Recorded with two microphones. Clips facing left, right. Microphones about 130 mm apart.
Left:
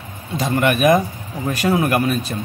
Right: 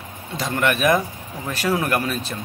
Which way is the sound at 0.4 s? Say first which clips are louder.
Left 4 dB; 10° left (ahead or behind).